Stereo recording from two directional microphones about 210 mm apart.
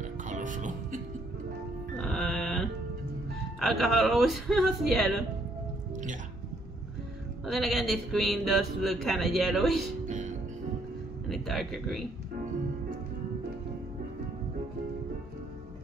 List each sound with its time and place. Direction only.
0.0 s music: 35° right (ahead or behind)
2.0 s music: centre (ahead or behind)
3.5 s speech: centre (ahead or behind)
7.4 s speech: centre (ahead or behind)
10.0 s music: 35° right (ahead or behind)
11.2 s speech: centre (ahead or behind)